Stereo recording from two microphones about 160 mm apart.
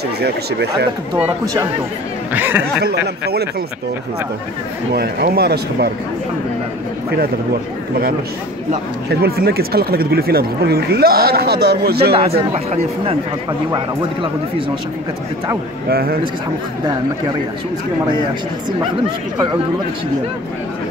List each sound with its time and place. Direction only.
2.3 s speech: 10° right (ahead or behind)
2.8 s speech: 85° right
4.9 s speech: 75° right (ahead or behind)
9.1 s speech: 75° right (ahead or behind)
12.5 s speech: 40° right (ahead or behind)
13.5 s speech: 30° right (ahead or behind)
15.9 s speech: 75° right (ahead or behind)